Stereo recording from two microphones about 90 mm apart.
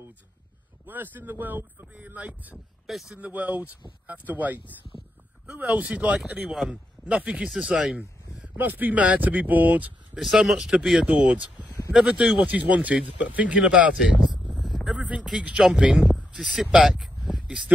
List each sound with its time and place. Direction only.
0.8 s speech: 20° right (ahead or behind)
2.9 s speech: centre (ahead or behind)
3.2 s a man's voice: 20° right (ahead or behind)
8.5 s speech: 20° right (ahead or behind)
10.1 s speech: 5° right (ahead or behind)
11.1 s speech: 15° right (ahead or behind)
12.4 s speech: 15° right (ahead or behind)
14.5 s a sound: centre (ahead or behind)
15.0 s speech: 15° right (ahead or behind)